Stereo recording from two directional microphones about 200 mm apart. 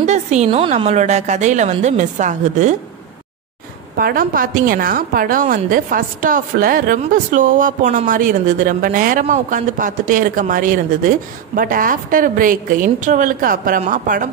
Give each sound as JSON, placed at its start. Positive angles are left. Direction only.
{"t": 0.0, "sound": "a woman's voice", "side_deg": -35}
{"t": 3.9, "sound": "a woman's voice", "side_deg": -45}